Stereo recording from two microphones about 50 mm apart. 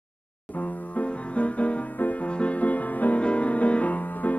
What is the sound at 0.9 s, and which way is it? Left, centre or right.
Music, left.